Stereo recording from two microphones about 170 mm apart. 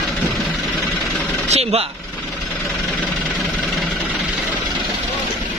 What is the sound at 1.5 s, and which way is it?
Speech, 35° right (ahead or behind).